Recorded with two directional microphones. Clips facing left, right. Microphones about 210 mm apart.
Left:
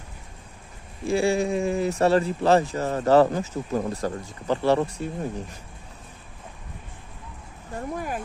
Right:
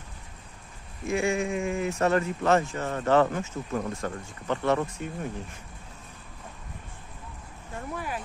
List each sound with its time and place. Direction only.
1.0 s speech: 35° left (ahead or behind)
7.9 s speech: 45° left (ahead or behind)